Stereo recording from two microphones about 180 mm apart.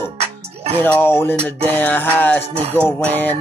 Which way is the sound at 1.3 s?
35° right (ahead or behind).